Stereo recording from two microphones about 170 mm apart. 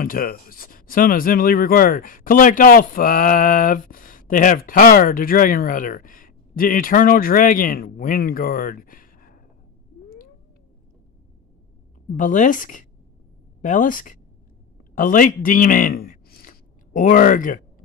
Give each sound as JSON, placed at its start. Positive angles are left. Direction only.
{"t": 0.0, "sound": "speech", "side_deg": 55}
{"t": 12.2, "sound": "speech", "side_deg": 50}